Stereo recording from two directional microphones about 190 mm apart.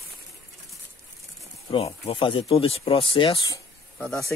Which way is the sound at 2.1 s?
25° left (ahead or behind).